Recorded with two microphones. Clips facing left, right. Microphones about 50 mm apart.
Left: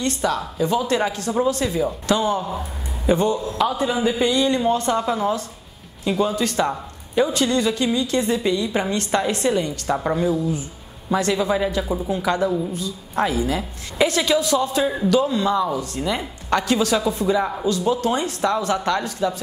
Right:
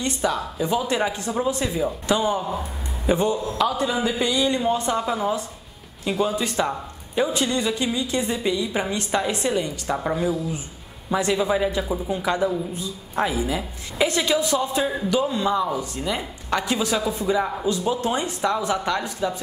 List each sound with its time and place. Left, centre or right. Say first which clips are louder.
0.0 s a woman's voice: left 2 dB; centre
3.5 s a woman's voice: left 1 dB; centre
17.6 s a woman's voice: left 3 dB; centre